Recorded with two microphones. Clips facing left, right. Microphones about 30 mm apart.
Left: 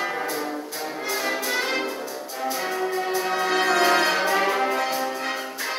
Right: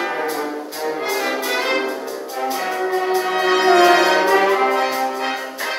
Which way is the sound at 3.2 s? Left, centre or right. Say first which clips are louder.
Right 6 dB; right.